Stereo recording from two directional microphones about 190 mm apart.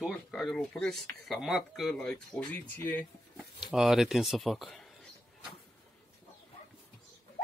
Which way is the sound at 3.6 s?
Centre (ahead or behind).